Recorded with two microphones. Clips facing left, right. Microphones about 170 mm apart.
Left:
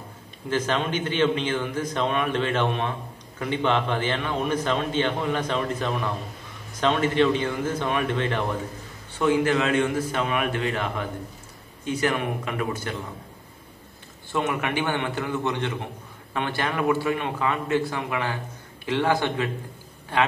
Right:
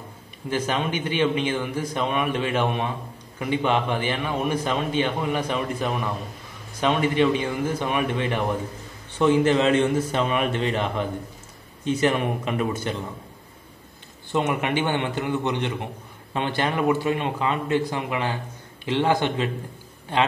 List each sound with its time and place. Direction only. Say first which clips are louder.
0.5 s a man's voice: even; 10° right (ahead or behind)
14.3 s a man's voice: right 2 dB; 20° right (ahead or behind)